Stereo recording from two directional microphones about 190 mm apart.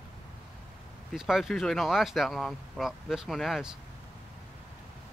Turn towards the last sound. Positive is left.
turn(degrees=0)  # may be behind; listen again after turning